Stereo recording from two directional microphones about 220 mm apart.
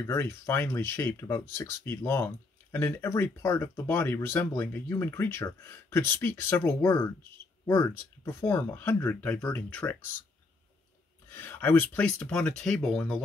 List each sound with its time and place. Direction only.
0.0 s speech: 10° left (ahead or behind)
11.2 s speech: 10° left (ahead or behind)